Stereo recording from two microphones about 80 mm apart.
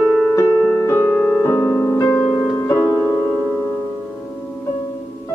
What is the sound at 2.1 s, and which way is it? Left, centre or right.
Music, left.